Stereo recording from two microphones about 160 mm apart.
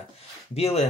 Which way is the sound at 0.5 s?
40° left (ahead or behind).